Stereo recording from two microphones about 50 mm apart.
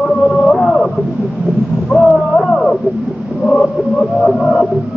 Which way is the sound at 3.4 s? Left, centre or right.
Centre.